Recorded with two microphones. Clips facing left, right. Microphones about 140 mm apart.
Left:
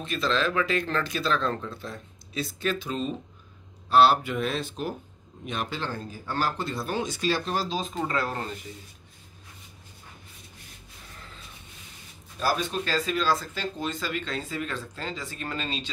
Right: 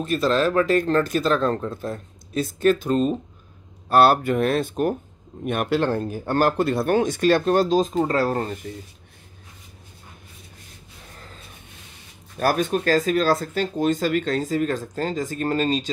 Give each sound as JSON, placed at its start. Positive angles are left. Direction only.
{"t": 0.0, "sound": "speech", "side_deg": -45}
{"t": 12.4, "sound": "speech", "side_deg": -55}